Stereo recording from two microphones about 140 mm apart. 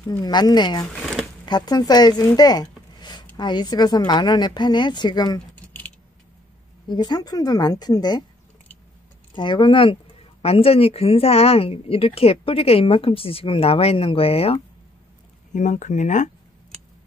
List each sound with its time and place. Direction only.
0.0 s speech: 25° left (ahead or behind)
5.7 s keys jangling: 10° left (ahead or behind)
6.9 s a woman's voice: 30° left (ahead or behind)
9.3 s speech: 35° left (ahead or behind)
15.5 s speech: 60° left (ahead or behind)